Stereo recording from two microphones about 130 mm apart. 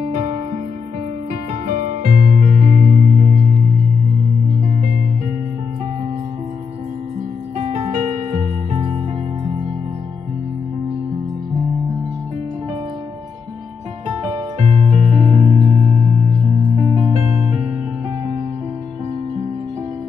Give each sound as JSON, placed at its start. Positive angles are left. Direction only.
{"t": 1.7, "sound": "music", "side_deg": -90}
{"t": 8.3, "sound": "music", "side_deg": -65}
{"t": 14.6, "sound": "music", "side_deg": -60}